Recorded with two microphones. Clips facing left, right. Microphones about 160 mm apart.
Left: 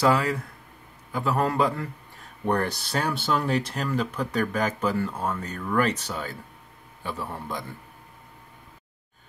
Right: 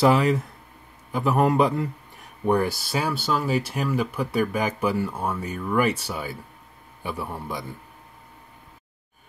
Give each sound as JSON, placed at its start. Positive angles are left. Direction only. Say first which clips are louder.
{"t": 0.0, "sound": "a man's voice", "louder": "right 3 dB", "side_deg": -20}
{"t": 2.4, "sound": "speech", "louder": "right 3 dB", "side_deg": -10}